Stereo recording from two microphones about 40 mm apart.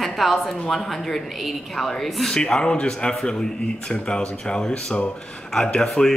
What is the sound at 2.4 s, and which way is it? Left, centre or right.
Speech, left.